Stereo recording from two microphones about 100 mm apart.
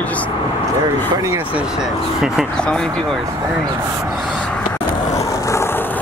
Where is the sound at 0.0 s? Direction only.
15° left (ahead or behind).